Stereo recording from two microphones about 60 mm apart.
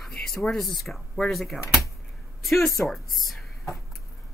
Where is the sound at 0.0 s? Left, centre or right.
Centre.